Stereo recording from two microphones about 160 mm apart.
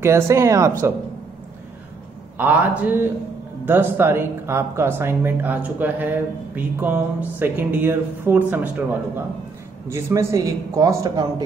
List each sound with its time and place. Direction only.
0.0 s speech: 15° right (ahead or behind)
2.3 s speech: 10° right (ahead or behind)
9.8 s a man's voice: 15° right (ahead or behind)